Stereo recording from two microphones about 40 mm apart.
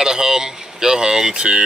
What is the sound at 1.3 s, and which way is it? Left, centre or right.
Speech, right.